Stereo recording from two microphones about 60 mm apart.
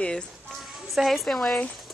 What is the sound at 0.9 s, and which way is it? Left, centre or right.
Speech, centre.